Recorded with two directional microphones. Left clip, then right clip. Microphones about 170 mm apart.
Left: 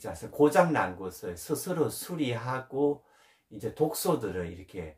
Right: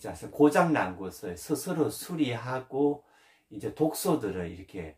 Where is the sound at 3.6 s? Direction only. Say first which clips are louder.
Even; 10° left (ahead or behind).